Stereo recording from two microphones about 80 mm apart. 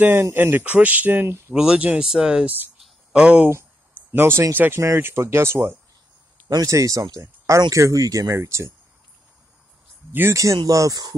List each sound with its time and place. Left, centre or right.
0.2 s speech: right
1.5 s speech: centre
4.1 s speech: right
6.5 s speech: right
10.3 s speech: right